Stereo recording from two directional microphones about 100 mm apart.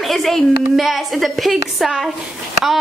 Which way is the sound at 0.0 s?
Centre (ahead or behind).